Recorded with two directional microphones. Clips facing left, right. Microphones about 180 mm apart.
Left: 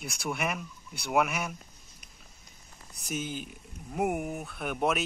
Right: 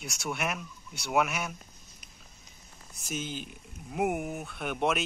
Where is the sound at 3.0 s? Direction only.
5° left (ahead or behind).